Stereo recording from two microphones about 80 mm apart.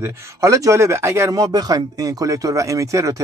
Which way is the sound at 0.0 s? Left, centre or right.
Right.